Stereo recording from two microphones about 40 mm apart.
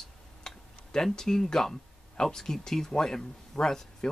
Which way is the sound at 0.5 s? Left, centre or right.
Centre.